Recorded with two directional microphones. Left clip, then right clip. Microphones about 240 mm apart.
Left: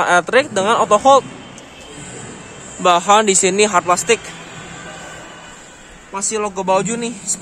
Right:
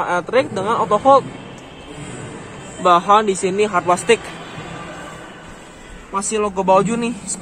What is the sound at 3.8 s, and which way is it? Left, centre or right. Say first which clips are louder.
Speech: even; centre.